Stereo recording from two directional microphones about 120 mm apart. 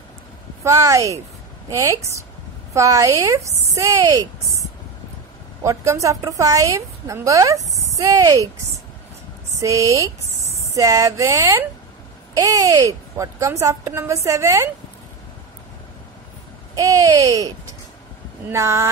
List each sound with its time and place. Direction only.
0.7 s a woman's voice: 25° right (ahead or behind)
5.6 s a woman's voice: 25° right (ahead or behind)
9.6 s a woman's voice: 25° right (ahead or behind)
16.7 s a woman's voice: 30° right (ahead or behind)